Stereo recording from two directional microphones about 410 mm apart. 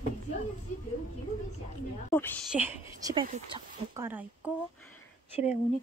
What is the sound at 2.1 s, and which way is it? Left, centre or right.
Speech, centre.